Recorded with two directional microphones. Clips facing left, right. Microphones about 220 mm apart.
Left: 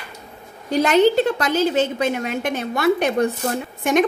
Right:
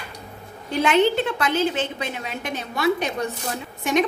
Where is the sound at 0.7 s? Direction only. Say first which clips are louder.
Left 4 dB; 40° left (ahead or behind).